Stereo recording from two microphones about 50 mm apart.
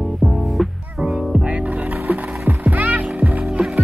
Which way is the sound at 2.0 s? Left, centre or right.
Right.